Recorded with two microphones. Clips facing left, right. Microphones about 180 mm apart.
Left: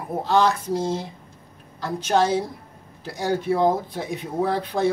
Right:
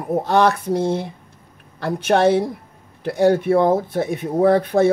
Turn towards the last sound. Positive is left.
turn(degrees=-55)  # may be behind; listen again after turning